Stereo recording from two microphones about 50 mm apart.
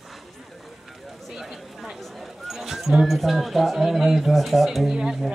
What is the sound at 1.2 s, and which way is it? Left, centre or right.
Speech, centre.